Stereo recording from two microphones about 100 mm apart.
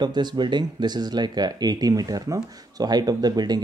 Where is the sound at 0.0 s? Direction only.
45° right (ahead or behind).